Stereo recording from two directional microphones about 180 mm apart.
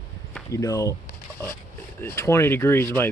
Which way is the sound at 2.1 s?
15° left (ahead or behind).